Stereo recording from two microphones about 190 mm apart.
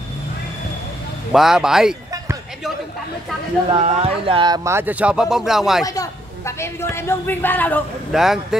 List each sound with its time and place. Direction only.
1.3 s speech: centre (ahead or behind)
3.7 s speech: 30° right (ahead or behind)
4.6 s speech: 10° right (ahead or behind)
5.9 s a man's voice: 15° left (ahead or behind)
8.1 s speech: centre (ahead or behind)